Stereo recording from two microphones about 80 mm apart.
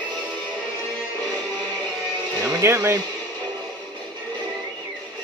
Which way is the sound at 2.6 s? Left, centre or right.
Right.